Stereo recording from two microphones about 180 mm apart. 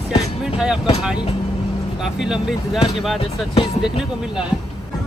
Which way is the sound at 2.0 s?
5° right (ahead or behind).